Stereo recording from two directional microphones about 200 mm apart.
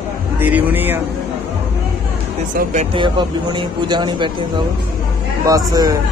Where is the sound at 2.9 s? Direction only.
25° right (ahead or behind).